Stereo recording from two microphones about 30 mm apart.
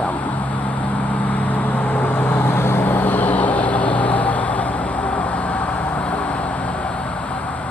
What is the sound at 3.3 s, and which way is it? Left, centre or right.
Vehicle, left.